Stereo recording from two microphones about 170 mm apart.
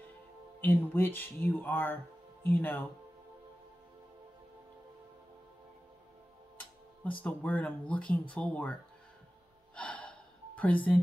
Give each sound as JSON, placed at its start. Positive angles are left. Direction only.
{"t": 0.6, "sound": "speech", "side_deg": 10}
{"t": 6.6, "sound": "speech", "side_deg": 5}
{"t": 9.8, "sound": "gasp", "side_deg": 5}